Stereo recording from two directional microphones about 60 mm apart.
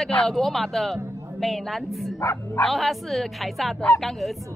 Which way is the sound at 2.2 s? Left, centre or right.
Left.